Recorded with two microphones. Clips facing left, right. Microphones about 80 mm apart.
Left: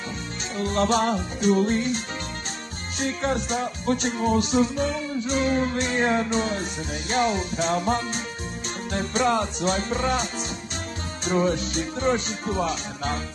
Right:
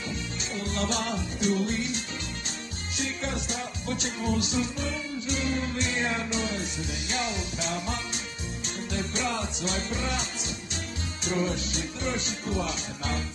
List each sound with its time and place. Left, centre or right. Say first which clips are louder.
0.6 s music: left 9 dB; left
3.0 s music: left 7 dB; left
11.2 s music: left 6 dB; left